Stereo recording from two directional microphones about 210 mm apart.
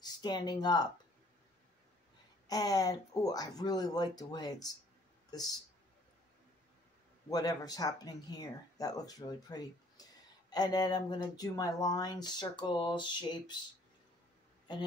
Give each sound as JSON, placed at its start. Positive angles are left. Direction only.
{"t": 0.0, "sound": "speech", "side_deg": 20}
{"t": 2.4, "sound": "speech", "side_deg": 20}
{"t": 7.2, "sound": "speech", "side_deg": 20}